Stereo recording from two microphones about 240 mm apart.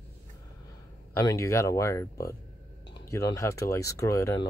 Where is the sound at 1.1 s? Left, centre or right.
Centre.